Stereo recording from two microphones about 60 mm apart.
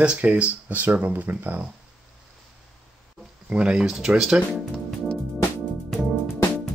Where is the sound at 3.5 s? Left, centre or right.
Centre.